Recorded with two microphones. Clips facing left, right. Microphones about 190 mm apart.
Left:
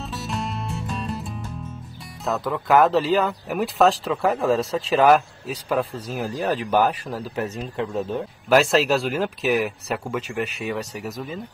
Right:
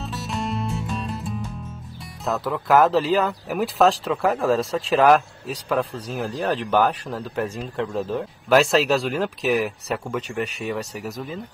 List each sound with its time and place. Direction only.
0.0 s music: centre (ahead or behind)
2.2 s speech: centre (ahead or behind)